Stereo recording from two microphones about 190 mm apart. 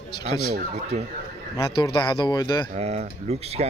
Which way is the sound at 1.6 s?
25° left (ahead or behind).